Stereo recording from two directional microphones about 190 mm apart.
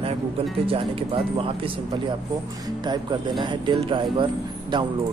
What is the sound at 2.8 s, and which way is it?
Speech, 25° right (ahead or behind).